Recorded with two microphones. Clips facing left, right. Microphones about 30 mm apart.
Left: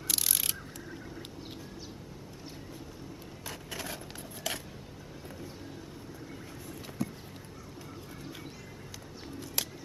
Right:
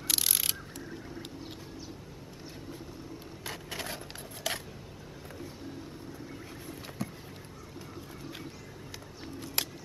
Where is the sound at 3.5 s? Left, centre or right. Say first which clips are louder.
Right 1 dB; centre.